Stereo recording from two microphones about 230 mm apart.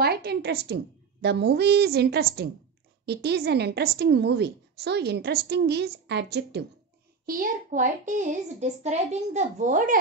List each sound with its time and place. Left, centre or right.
0.0 s a woman's voice: right